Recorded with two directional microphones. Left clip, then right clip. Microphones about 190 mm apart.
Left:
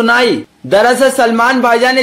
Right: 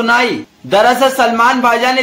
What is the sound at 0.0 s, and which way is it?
A man's voice, 55° left (ahead or behind).